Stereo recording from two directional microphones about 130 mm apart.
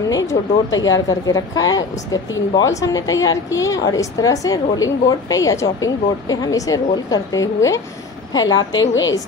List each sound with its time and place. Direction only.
0.1 s a woman's voice: 30° left (ahead or behind)